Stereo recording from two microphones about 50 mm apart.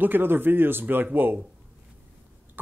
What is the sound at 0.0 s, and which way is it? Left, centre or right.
Speech, right.